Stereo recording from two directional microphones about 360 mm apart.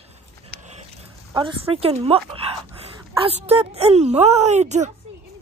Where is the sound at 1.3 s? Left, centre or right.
Centre.